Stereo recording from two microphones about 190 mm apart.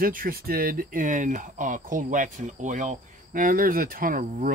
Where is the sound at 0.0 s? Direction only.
50° right (ahead or behind).